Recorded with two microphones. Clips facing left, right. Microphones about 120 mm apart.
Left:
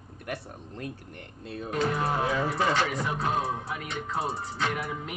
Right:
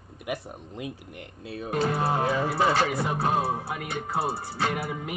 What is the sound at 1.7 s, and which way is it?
Music, 30° right (ahead or behind).